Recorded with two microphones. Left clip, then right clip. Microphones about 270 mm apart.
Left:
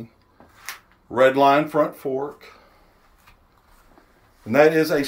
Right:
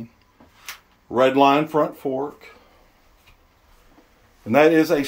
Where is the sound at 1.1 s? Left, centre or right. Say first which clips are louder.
Even; centre.